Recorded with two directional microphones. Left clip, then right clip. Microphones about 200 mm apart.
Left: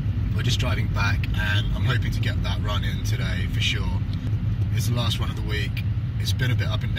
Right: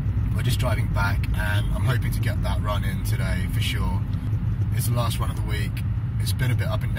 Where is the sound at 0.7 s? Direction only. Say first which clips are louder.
Even; centre (ahead or behind).